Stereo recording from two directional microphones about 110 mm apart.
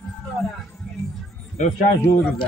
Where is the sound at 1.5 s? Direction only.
90° left.